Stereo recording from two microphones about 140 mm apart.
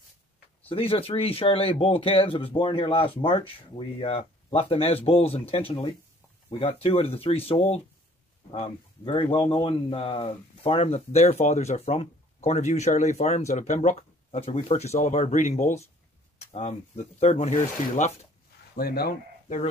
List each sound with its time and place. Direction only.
0.7 s speech: 45° left (ahead or behind)
18.8 s speech: 90° left